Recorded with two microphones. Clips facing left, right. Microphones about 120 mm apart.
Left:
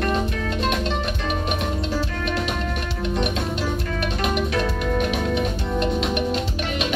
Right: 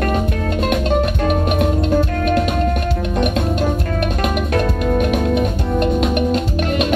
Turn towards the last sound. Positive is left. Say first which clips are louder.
# right 7 dB
turn(degrees=-50)  # may be behind; listen again after turning